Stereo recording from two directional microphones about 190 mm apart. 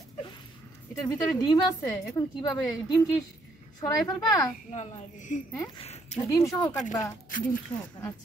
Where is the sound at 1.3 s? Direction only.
20° left (ahead or behind).